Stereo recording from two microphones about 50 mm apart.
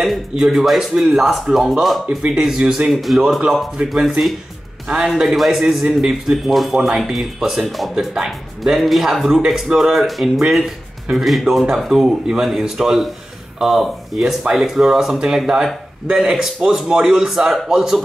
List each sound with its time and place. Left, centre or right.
0.4 s speech: centre
0.9 s speech: centre
1.2 s speech: centre
2.3 s speech: centre
2.9 s speech: centre
3.2 s a man's voice: centre
5.1 s speech: centre
9.9 s speech: centre
11.6 s speech: centre